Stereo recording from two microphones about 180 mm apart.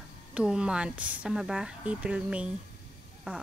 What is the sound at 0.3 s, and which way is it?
A woman's voice, 5° right (ahead or behind).